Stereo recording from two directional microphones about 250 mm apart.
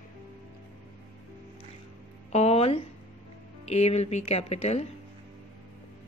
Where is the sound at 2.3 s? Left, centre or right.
Left.